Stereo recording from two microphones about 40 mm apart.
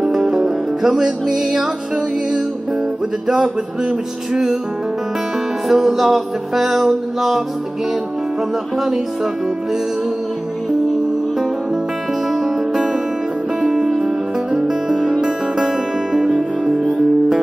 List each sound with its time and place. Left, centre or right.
0.0 s music: centre
3.3 s music: centre
5.7 s music: centre
8.7 s music: centre
12.3 s music: centre
13.6 s music: centre